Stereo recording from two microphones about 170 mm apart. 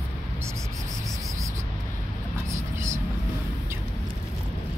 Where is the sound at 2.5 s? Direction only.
15° right (ahead or behind).